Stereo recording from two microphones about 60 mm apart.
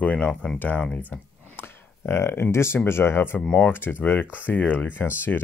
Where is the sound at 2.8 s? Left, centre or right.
Left.